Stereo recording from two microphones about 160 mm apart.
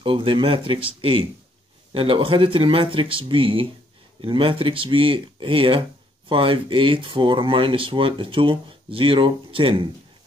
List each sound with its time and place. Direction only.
0.0 s speech: 30° right (ahead or behind)